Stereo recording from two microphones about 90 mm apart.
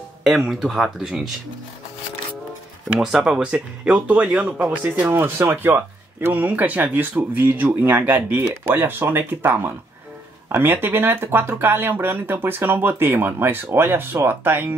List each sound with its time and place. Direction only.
0.5 s speech: 5° right (ahead or behind)
3.0 s a man's voice: 5° right (ahead or behind); by 14.7 s 25° right (ahead or behind)